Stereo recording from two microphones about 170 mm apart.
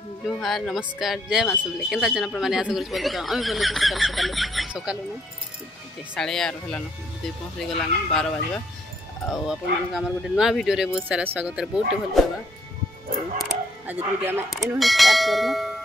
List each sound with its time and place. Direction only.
0.3 s speech: centre (ahead or behind)
6.1 s speech: 5° left (ahead or behind)
9.3 s speech: centre (ahead or behind)
13.4 s a sound: 10° right (ahead or behind)
14.8 s speech: centre (ahead or behind)